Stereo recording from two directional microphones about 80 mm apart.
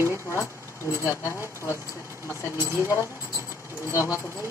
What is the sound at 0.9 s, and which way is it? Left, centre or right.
Speech, left.